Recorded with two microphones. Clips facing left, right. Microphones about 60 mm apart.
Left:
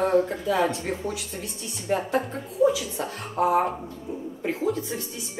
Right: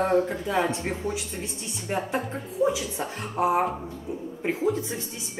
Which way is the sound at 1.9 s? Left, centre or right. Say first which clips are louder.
Left 3 dB; centre.